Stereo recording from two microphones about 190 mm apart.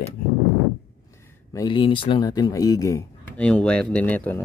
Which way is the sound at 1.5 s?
25° left (ahead or behind).